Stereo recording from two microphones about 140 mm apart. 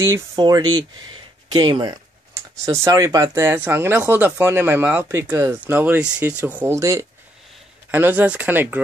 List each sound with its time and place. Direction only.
0.0 s speech: 25° right (ahead or behind)
5.3 s speech: 20° right (ahead or behind)